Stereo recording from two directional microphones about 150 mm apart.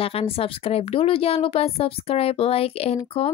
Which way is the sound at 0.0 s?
40° left (ahead or behind).